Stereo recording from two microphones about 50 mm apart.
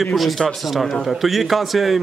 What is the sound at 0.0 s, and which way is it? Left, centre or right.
Speech, centre.